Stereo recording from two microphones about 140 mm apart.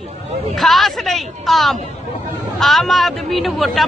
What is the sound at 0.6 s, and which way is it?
Speech, centre (ahead or behind).